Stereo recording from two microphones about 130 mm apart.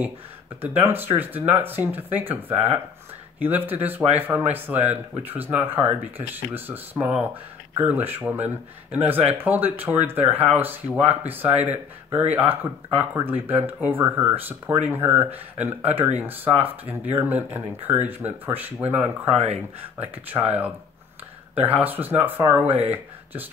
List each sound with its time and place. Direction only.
0.6 s speech: 15° right (ahead or behind)
19.3 s speech: 55° right (ahead or behind)
20.0 s speech: 15° right (ahead or behind)